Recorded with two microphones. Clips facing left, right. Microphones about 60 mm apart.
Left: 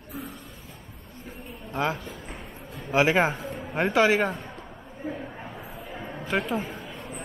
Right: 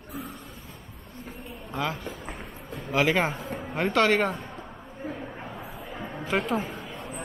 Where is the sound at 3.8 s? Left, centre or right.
Centre.